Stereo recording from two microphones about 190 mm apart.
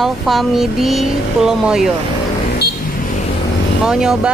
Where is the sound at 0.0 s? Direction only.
Centre (ahead or behind).